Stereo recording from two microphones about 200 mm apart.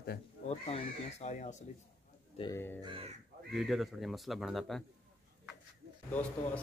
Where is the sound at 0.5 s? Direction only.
30° left (ahead or behind).